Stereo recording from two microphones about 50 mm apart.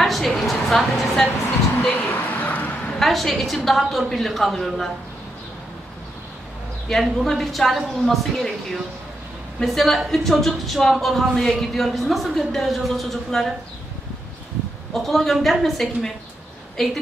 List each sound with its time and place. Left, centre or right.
0.0 s a sound: centre
1.9 s a sound: left
3.0 s a woman's voice: centre
6.9 s a woman's voice: centre
9.6 s a woman's voice: centre
15.0 s a woman's voice: centre